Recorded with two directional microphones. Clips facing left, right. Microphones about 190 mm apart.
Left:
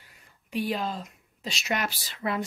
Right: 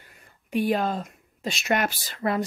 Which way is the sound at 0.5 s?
55° right (ahead or behind).